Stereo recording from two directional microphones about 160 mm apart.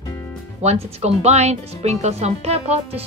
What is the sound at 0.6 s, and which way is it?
Speech, 40° right (ahead or behind).